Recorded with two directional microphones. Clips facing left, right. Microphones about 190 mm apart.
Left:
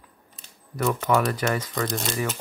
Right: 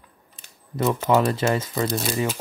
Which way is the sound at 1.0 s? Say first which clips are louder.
Right 4 dB; 25° right (ahead or behind).